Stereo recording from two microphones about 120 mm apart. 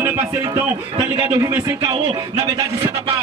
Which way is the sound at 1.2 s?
20° right (ahead or behind).